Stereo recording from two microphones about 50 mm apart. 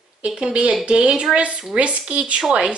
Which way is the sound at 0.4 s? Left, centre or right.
Right.